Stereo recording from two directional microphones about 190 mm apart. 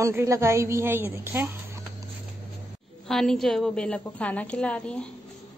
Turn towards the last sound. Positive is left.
turn(degrees=5)  # may be behind; listen again after turning